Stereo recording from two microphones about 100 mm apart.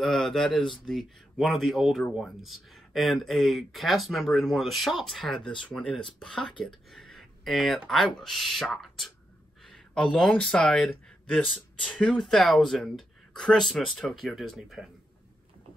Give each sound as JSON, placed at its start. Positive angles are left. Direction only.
{"t": 0.0, "sound": "speech", "side_deg": 5}
{"t": 6.6, "sound": "a sound", "side_deg": 5}
{"t": 7.9, "sound": "speech", "side_deg": 0}